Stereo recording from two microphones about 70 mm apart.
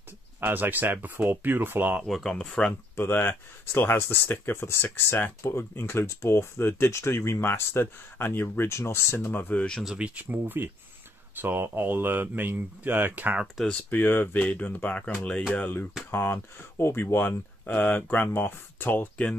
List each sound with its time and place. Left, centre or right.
0.4 s speech: right
2.0 s speech: centre
2.3 s speech: centre
3.0 s speech: left
9.6 s speech: centre
9.9 s speech: centre
13.7 s speech: left
16.1 s speech: left